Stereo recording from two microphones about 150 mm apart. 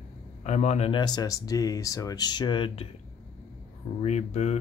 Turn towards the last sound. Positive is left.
turn(degrees=45)  # may be behind; listen again after turning